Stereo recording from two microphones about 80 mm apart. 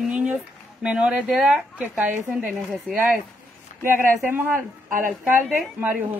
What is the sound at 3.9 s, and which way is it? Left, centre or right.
Speech, right.